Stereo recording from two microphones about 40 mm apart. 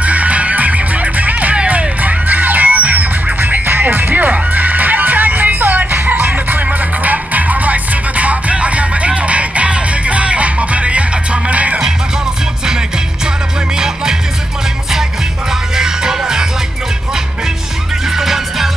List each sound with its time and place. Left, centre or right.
0.0 s music: right
13.7 s music: centre
15.7 s music: centre
18.1 s music: centre